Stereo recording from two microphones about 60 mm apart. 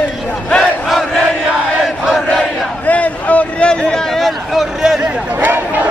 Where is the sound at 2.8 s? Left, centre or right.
Left.